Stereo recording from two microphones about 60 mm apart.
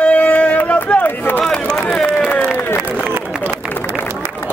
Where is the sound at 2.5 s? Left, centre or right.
Left.